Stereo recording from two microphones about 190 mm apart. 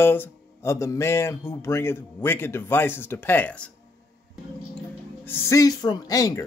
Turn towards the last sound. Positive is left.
turn(degrees=20)  # may be behind; listen again after turning